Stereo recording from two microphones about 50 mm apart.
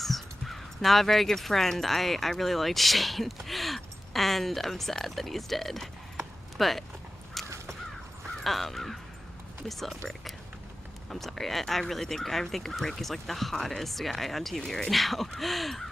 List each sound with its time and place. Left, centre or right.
0.0 s speech: centre
7.4 s crow: centre
9.7 s speech: centre
14.6 s speech: centre
14.9 s speech: centre